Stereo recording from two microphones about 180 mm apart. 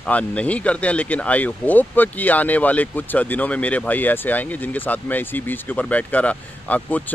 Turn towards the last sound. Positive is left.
turn(degrees=10)  # may be behind; listen again after turning